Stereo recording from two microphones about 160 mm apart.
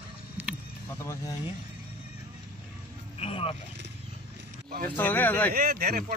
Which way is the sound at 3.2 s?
35° left (ahead or behind).